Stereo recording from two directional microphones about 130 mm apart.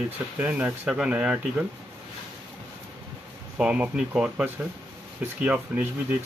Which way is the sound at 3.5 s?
10° right (ahead or behind).